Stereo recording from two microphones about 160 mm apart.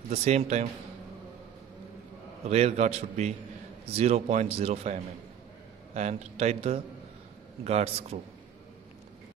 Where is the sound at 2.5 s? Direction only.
45° right (ahead or behind).